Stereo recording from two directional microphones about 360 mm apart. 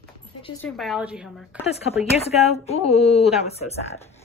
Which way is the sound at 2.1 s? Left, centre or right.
Centre.